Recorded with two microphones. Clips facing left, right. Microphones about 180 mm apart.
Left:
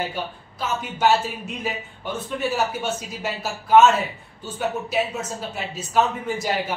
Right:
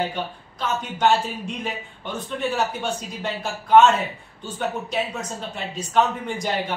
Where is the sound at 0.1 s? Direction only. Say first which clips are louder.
Right 1 dB; 5° left (ahead or behind).